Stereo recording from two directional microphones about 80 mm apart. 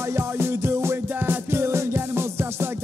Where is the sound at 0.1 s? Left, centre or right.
Right.